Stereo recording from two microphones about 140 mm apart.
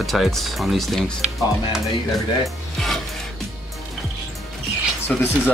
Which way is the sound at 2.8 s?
5° left (ahead or behind).